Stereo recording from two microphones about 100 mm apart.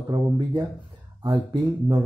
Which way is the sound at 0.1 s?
45° right (ahead or behind).